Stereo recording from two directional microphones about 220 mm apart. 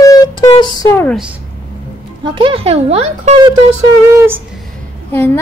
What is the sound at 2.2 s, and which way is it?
Speech, 25° right (ahead or behind).